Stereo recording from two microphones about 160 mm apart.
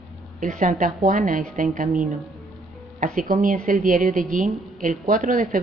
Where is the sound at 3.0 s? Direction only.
60° right (ahead or behind).